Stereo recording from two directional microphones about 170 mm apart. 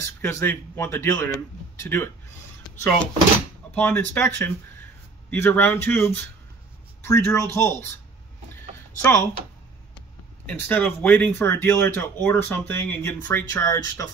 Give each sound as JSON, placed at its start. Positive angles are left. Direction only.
{"t": 0.0, "sound": "speech", "side_deg": 15}
{"t": 3.7, "sound": "speech", "side_deg": 10}
{"t": 9.0, "sound": "speech", "side_deg": 15}
{"t": 10.4, "sound": "speech", "side_deg": 10}